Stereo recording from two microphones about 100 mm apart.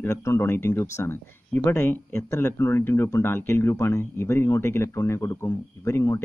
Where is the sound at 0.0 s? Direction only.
30° left (ahead or behind).